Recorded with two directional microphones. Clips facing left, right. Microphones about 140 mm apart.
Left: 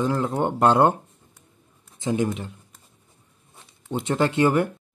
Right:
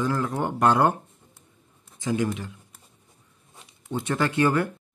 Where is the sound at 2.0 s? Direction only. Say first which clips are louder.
Left 2 dB; 25° left (ahead or behind).